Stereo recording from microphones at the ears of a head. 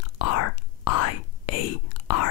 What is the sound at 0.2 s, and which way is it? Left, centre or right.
Whispering, left.